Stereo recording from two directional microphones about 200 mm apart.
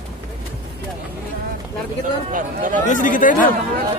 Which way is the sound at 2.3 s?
40° right (ahead or behind).